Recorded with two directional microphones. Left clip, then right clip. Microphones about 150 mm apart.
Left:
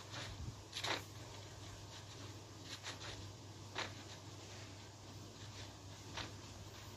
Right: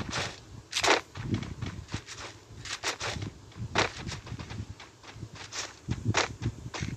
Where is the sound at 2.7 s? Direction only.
50° right (ahead or behind).